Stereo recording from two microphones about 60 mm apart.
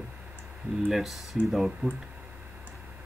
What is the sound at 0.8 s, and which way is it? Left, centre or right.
Speech, centre.